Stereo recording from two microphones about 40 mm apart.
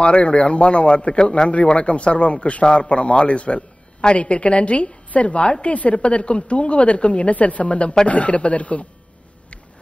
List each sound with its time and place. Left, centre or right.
0.0 s a man's voice: left